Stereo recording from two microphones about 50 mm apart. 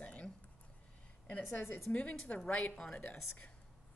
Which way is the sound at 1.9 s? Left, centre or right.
Left.